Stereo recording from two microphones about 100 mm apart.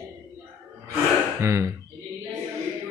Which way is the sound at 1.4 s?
30° right (ahead or behind).